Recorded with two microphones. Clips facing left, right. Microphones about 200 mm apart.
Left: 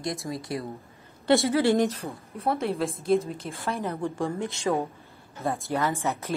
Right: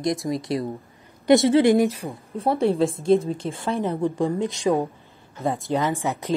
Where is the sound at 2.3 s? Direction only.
30° right (ahead or behind).